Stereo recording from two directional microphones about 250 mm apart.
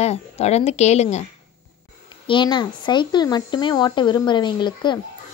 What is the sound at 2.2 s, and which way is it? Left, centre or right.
A woman's voice, centre.